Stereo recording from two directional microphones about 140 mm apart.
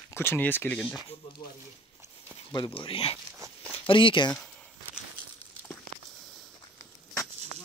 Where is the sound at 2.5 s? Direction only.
35° left (ahead or behind).